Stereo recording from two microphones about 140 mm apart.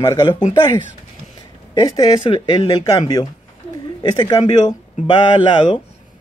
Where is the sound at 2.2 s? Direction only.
35° left (ahead or behind).